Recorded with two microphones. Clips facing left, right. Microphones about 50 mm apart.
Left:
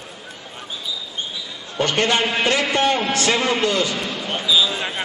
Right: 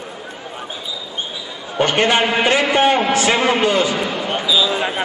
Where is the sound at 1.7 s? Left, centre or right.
Right.